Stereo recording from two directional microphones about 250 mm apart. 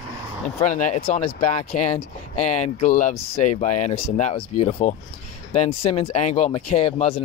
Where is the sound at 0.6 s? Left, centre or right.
Left.